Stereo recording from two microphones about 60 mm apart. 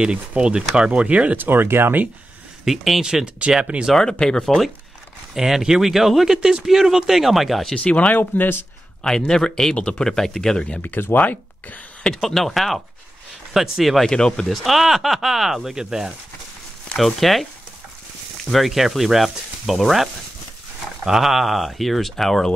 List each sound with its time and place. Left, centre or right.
0.0 s speech: centre
1.4 s speech: right
2.6 s speech: centre; by 3.8 s right
3.8 s a man's voice: centre
5.3 s speech: centre
7.7 s speech: left
8.2 s speech: left
9.0 s a man's voice: centre
10.8 s speech: left
12.0 s speech: centre
14.1 s speech: centre